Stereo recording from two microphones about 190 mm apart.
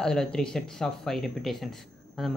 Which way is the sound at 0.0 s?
5° left (ahead or behind).